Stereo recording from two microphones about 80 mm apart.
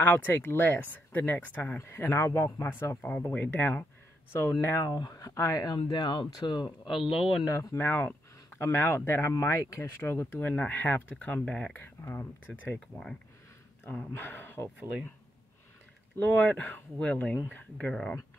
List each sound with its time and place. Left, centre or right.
0.0 s speech: left
4.9 s speech: left
5.9 s speech: left
7.0 s speech: centre
7.5 s speech: left
11.4 s speech: centre
11.7 s speech: left
13.9 s speech: left
16.2 s speech: left